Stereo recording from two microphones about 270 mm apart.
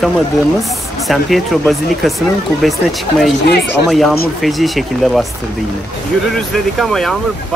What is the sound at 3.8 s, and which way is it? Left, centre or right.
Speech, centre.